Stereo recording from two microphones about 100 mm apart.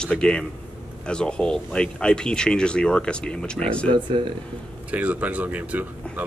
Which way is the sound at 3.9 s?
50° right (ahead or behind).